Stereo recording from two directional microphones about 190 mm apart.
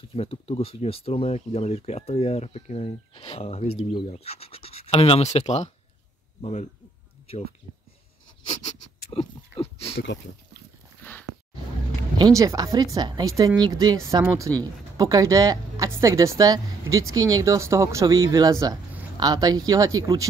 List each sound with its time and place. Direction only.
0.1 s speech: 30° left (ahead or behind)
9.1 s speech: 30° left (ahead or behind)
11.0 s a sound: 10° left (ahead or behind)
12.4 s speech: 15° right (ahead or behind)